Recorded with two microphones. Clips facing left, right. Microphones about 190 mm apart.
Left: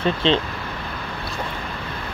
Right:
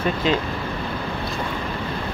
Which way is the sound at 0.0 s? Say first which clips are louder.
Left 2 dB; 25° left (ahead or behind).